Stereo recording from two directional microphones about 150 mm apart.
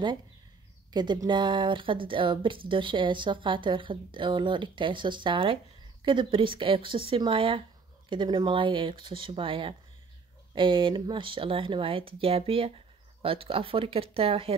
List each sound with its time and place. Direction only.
0.9 s speech: 30° right (ahead or behind)